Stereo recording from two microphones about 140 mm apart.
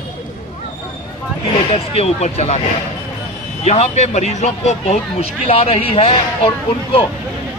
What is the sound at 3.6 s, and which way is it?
Speech, 50° left (ahead or behind).